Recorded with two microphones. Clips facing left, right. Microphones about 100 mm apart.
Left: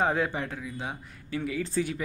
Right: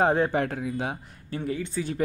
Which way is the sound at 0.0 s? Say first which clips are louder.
Right 4 dB; 40° right (ahead or behind).